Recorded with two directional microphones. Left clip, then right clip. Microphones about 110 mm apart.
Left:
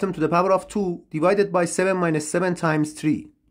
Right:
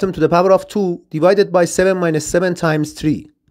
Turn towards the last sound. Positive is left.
turn(degrees=-45)  # may be behind; listen again after turning